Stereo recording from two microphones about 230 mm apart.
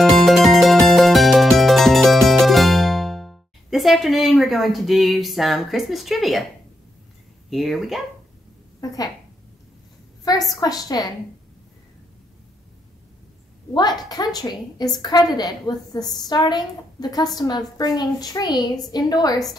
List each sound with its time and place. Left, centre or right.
0.1 s music: centre
7.4 s speech: centre
10.2 s a woman's voice: centre
13.7 s a woman's voice: centre